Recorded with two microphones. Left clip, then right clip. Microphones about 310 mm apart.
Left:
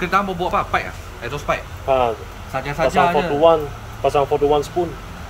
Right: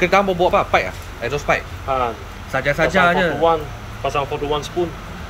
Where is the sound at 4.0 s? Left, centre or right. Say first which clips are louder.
Left 5 dB; left.